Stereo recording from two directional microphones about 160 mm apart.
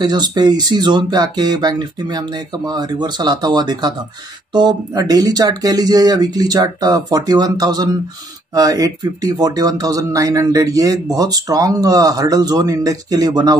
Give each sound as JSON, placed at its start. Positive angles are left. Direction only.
{"t": 0.0, "sound": "speech", "side_deg": -25}